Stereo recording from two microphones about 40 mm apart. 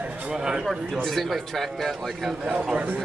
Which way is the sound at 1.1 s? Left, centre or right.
Centre.